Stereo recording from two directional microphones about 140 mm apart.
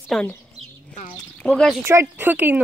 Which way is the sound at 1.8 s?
15° right (ahead or behind).